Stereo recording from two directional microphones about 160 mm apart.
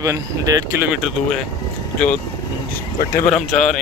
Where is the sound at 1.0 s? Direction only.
5° left (ahead or behind).